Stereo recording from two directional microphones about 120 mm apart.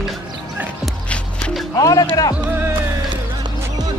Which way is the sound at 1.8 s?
30° left (ahead or behind).